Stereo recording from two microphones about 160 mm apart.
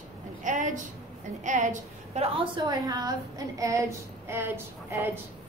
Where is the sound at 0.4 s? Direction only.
50° right (ahead or behind).